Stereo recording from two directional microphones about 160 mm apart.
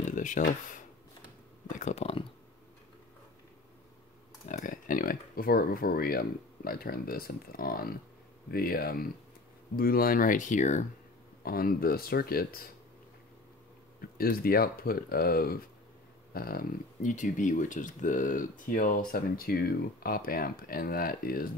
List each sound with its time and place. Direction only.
0.1 s speech: 55° left (ahead or behind)
1.8 s speech: 45° left (ahead or behind)
4.5 s speech: 55° left (ahead or behind)
11.4 s speech: 65° left (ahead or behind)
14.1 s speech: 70° left (ahead or behind)